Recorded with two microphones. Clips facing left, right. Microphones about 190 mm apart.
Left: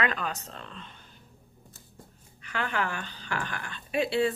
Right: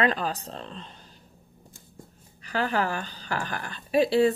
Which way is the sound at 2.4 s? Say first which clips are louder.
Right 5 dB; 35° right (ahead or behind).